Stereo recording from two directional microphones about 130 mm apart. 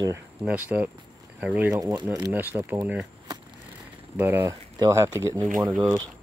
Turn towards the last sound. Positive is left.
turn(degrees=-15)  # may be behind; listen again after turning